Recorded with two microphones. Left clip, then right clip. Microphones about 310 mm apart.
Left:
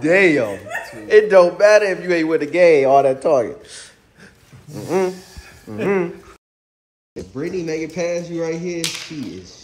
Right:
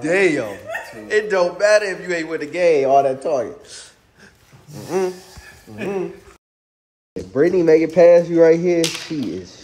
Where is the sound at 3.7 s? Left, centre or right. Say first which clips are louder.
Left 1 dB; centre.